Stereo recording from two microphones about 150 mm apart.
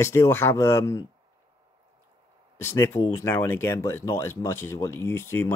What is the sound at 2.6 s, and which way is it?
Speech, 15° left (ahead or behind).